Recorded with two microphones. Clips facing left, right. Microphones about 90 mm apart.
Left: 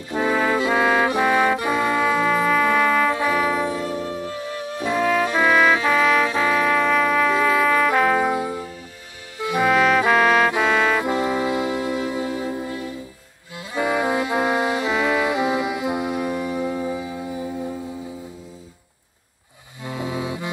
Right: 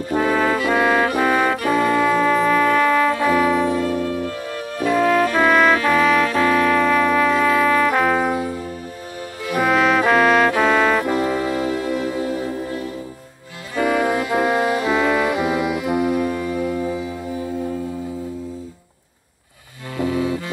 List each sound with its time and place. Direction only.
0.6 s brass instrument: 20° left (ahead or behind)
3.8 s music: 20° left (ahead or behind)
4.4 s music: 40° right (ahead or behind)
4.7 s brass instrument: 20° left (ahead or behind); by 5.8 s 5° left (ahead or behind)
5.9 s music: 5° left (ahead or behind)
6.2 s brass instrument: 10° left (ahead or behind)
8.3 s music: 15° left (ahead or behind)
9.4 s brass instrument: 20° left (ahead or behind)
9.7 s trumpet: centre (ahead or behind)
10.6 s music: 5° left (ahead or behind)
11.1 s music: 20° left (ahead or behind)
13.7 s brass instrument: 20° left (ahead or behind)
19.9 s music: 20° left (ahead or behind)